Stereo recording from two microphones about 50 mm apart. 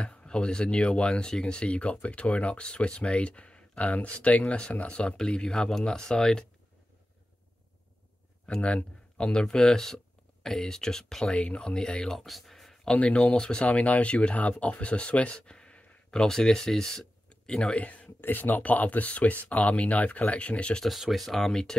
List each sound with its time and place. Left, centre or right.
0.0 s speech: left
8.5 s speech: centre
11.3 s speech: left
12.2 s speech: centre
12.9 s speech: left
13.7 s speech: left
16.1 s speech: centre
17.3 s a sound: centre
17.7 s speech: left
21.3 s speech: centre